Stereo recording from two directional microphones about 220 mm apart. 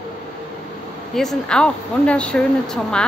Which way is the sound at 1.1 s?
Centre (ahead or behind).